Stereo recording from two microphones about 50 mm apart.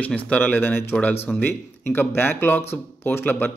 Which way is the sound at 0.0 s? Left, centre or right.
Left.